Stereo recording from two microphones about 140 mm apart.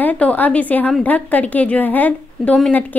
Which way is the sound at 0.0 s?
10° left (ahead or behind).